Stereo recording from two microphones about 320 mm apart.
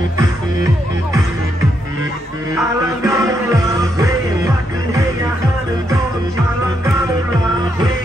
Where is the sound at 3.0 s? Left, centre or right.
Centre.